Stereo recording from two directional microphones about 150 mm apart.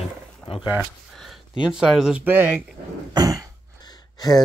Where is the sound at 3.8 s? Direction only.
25° left (ahead or behind).